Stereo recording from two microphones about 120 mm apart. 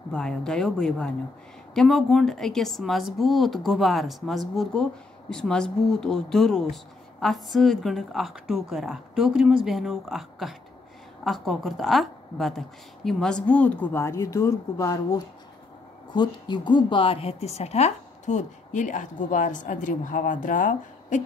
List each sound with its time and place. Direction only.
0.1 s a woman's voice: 5° left (ahead or behind); by 21.2 s 90° left